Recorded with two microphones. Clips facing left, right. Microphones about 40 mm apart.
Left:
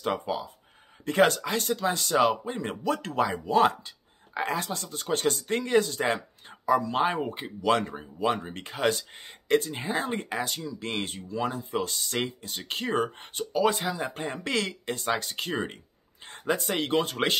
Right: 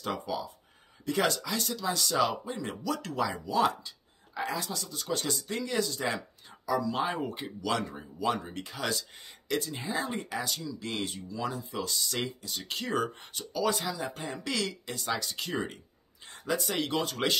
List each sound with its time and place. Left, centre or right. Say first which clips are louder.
0.0 s speech: left 4 dB; left
1.0 s speech: left 6 dB; left
7.2 s speech: left 6 dB; left